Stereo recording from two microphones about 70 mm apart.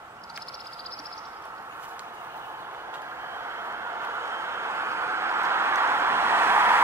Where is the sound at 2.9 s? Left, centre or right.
Right.